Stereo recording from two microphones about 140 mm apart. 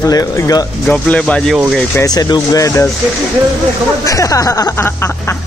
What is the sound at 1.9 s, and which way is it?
Music, 25° left (ahead or behind).